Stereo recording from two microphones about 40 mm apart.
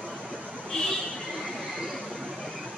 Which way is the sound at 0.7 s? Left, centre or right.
Centre.